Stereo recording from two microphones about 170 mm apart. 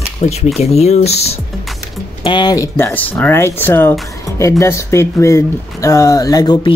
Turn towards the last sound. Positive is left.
turn(degrees=25)  # may be behind; listen again after turning